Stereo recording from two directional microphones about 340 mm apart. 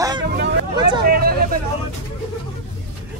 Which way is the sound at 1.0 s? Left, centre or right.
Right.